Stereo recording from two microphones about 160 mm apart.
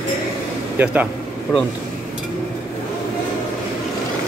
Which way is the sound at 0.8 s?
10° right (ahead or behind).